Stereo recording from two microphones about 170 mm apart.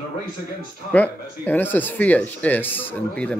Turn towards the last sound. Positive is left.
turn(degrees=5)  # may be behind; listen again after turning